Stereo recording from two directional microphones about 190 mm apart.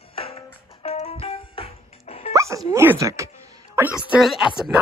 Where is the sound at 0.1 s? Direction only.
30° left (ahead or behind).